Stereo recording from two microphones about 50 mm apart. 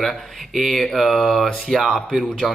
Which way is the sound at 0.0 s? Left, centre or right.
Centre.